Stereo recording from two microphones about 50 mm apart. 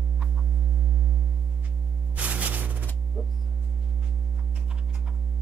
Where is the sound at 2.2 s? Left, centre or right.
Right.